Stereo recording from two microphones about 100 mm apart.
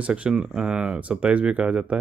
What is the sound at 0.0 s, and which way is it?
Speech, 10° right (ahead or behind).